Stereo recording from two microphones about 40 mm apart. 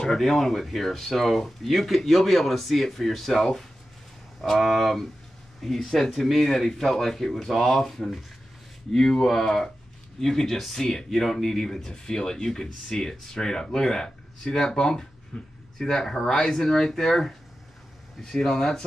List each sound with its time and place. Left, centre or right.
0.2 s speech: centre